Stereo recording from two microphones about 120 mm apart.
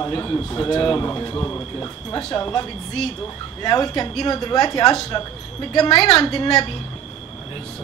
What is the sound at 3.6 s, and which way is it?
A man's voice, 30° left (ahead or behind).